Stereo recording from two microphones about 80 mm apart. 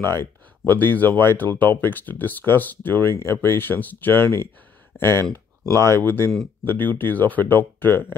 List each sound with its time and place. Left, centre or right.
0.0 s speech: left